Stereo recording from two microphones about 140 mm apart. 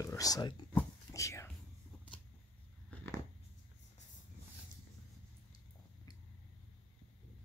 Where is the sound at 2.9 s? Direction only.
10° left (ahead or behind).